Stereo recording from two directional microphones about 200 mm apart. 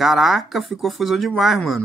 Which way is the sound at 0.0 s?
Centre (ahead or behind).